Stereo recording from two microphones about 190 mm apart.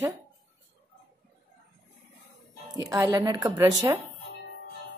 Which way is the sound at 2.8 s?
20° right (ahead or behind).